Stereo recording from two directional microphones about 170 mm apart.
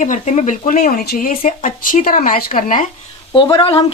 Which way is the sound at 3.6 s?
30° left (ahead or behind).